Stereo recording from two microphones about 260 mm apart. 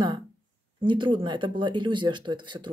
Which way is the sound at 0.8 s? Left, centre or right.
Centre.